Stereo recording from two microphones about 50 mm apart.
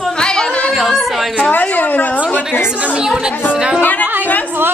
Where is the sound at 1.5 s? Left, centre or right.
Left.